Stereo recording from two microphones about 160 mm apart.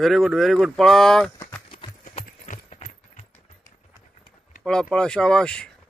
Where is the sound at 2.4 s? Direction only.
45° left (ahead or behind).